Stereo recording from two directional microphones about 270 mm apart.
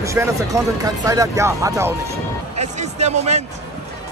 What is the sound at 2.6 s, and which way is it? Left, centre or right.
Speech, right.